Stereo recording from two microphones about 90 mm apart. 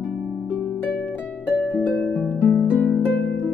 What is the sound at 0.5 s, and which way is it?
Harp, 15° left (ahead or behind).